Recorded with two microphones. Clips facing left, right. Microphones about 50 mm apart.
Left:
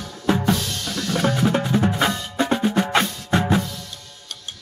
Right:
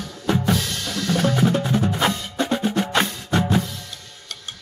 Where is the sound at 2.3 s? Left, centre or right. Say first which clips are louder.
Left 2 dB; centre.